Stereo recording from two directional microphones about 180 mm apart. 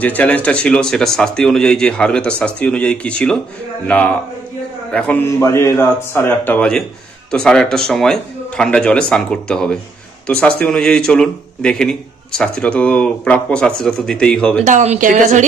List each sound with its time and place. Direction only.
0.0 s a man's voice: 10° left (ahead or behind)
14.6 s a woman's voice: 40° right (ahead or behind)